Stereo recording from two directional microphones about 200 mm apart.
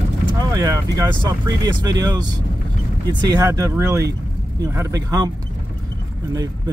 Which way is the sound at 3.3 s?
15° right (ahead or behind).